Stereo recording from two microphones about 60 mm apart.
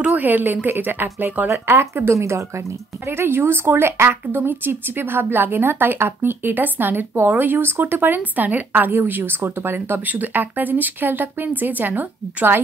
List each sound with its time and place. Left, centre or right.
0.0 s speech: right
1.7 s speech: right
2.1 s speech: right
3.1 s speech: right